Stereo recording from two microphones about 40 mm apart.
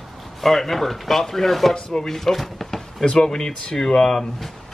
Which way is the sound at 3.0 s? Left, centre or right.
Centre.